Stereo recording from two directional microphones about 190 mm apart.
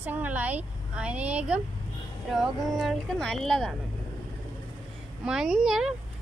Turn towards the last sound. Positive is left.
turn(degrees=0)  # may be behind; listen again after turning